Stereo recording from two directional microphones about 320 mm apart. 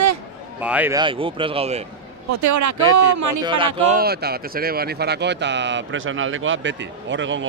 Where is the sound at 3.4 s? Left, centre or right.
Centre.